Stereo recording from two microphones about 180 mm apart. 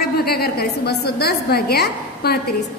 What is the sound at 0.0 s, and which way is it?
A woman's voice, 60° left (ahead or behind).